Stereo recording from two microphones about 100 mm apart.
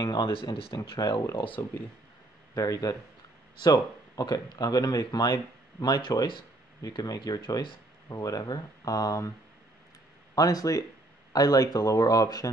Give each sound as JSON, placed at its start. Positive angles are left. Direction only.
{"t": 0.2, "sound": "speech", "side_deg": 60}
{"t": 0.9, "sound": "speech", "side_deg": 40}
{"t": 2.5, "sound": "speech", "side_deg": 35}
{"t": 10.3, "sound": "speech", "side_deg": 35}